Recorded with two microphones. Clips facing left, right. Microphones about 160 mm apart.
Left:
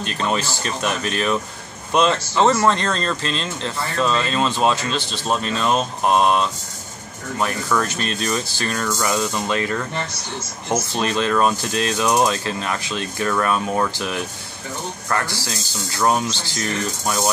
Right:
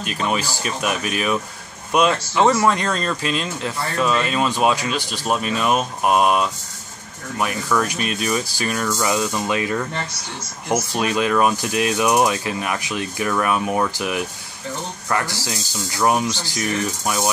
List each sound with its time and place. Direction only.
0.0 s speech: 10° right (ahead or behind)
9.0 s speech: 15° right (ahead or behind)